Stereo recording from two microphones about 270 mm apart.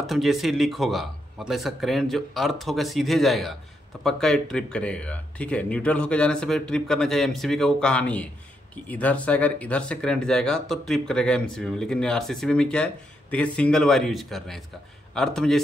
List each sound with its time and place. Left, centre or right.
0.0 s speech: centre